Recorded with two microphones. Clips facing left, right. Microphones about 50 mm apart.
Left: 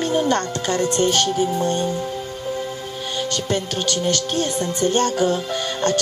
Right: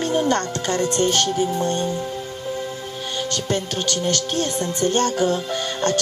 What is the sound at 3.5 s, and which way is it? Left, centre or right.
Music, centre.